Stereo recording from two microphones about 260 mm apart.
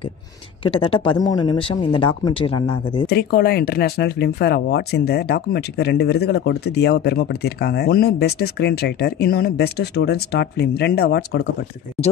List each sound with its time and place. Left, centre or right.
0.7 s speech: centre
3.1 s speech: left